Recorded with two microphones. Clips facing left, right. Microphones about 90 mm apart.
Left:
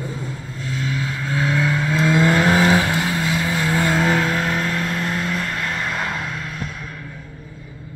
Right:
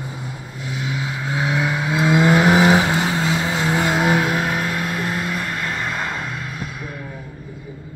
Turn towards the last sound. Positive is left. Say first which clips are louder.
# even
turn(degrees=0)  # may be behind; listen again after turning